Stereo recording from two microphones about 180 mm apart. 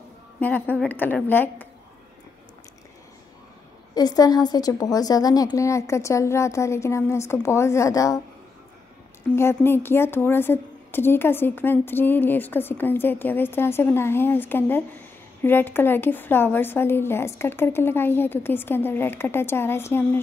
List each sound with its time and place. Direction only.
0.4 s a woman's voice: 10° left (ahead or behind)
3.9 s a woman's voice: 20° left (ahead or behind)
9.3 s a woman's voice: 15° left (ahead or behind)